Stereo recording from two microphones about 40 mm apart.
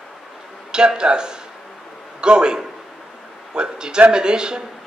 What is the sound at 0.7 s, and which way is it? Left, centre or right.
A man's voice, right.